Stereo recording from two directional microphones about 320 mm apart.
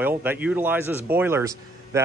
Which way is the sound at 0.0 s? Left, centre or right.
Centre.